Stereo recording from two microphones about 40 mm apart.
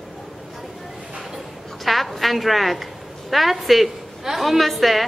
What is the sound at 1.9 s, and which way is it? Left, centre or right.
A woman's voice, centre.